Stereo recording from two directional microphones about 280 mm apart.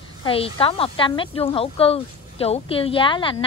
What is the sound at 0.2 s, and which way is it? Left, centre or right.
A woman's voice, centre.